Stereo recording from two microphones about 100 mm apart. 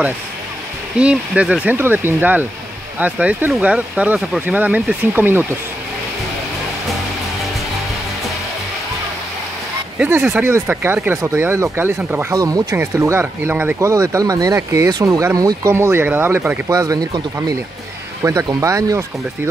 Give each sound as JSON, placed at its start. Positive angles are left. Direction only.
{"t": 0.9, "sound": "speech", "side_deg": -10}
{"t": 9.9, "sound": "speech", "side_deg": -20}
{"t": 12.4, "sound": "speech", "side_deg": -35}
{"t": 12.7, "sound": "speech", "side_deg": -25}
{"t": 13.8, "sound": "speech", "side_deg": -30}
{"t": 15.7, "sound": "speech", "side_deg": -25}
{"t": 18.2, "sound": "speech", "side_deg": -35}